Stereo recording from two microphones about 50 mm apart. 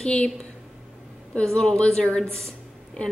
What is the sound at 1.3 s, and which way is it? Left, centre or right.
Speech, centre.